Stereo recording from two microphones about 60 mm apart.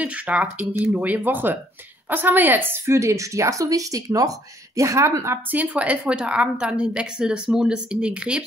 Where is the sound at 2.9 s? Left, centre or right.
Right.